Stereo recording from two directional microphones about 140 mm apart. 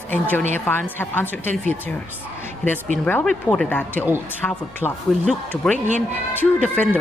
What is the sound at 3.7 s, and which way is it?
Speech, 10° left (ahead or behind).